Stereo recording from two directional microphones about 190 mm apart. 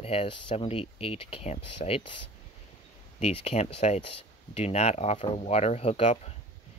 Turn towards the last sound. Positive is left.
turn(degrees=35)  # may be behind; listen again after turning